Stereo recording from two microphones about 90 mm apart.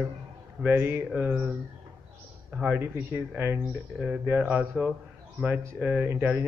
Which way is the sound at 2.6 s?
20° right (ahead or behind).